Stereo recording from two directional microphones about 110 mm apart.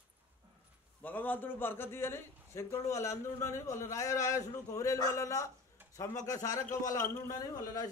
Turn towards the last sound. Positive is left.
turn(degrees=35)  # may be behind; listen again after turning